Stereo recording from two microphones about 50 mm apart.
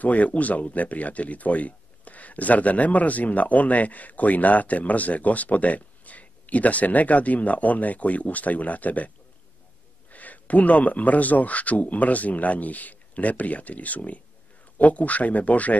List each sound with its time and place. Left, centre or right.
0.0 s speech: left
10.1 s speech: left